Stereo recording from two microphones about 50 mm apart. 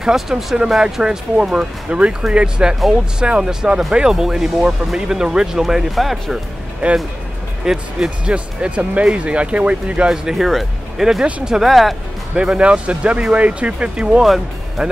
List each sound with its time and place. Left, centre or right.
0.0 s speech: centre
6.8 s speech: right
7.6 s speech: centre
10.1 s speech: centre
12.4 s speech: centre